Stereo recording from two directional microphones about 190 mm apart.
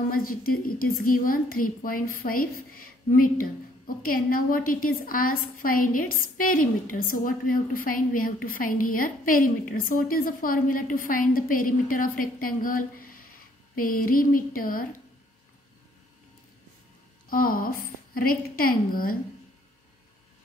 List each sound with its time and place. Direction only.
0.1 s a woman's voice: 50° left (ahead or behind)
17.3 s a woman's voice: 50° left (ahead or behind)